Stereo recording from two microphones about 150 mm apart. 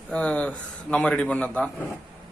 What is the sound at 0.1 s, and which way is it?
A man's voice, 5° left (ahead or behind).